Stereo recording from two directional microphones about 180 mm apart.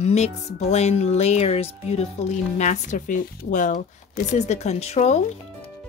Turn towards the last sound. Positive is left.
turn(degrees=40)  # may be behind; listen again after turning